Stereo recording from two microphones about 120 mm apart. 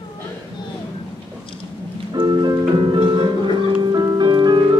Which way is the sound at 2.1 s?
35° right (ahead or behind).